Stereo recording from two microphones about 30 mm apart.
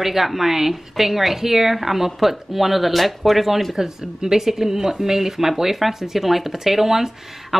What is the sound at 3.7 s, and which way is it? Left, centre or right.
A woman's voice, centre.